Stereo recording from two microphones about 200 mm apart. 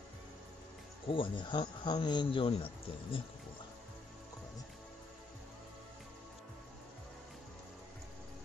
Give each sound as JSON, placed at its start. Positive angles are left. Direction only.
{"t": 1.0, "sound": "speech", "side_deg": 25}